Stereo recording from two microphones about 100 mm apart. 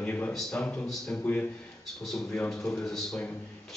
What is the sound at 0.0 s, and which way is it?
A man's voice, 15° left (ahead or behind).